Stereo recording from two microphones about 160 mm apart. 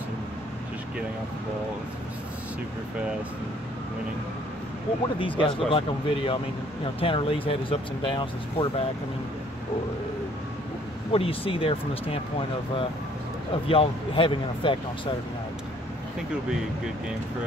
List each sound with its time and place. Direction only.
5.4 s speech: 35° left (ahead or behind)
11.1 s speech: 35° left (ahead or behind)